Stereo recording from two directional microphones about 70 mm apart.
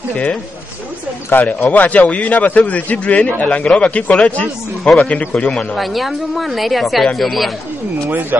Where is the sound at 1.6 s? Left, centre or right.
Left.